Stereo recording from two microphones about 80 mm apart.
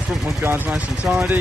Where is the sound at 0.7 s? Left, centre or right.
Centre.